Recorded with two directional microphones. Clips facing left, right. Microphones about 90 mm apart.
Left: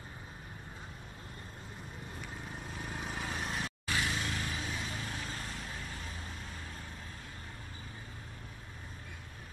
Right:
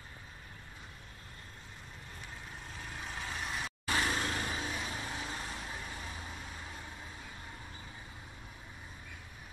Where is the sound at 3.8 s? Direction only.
25° right (ahead or behind).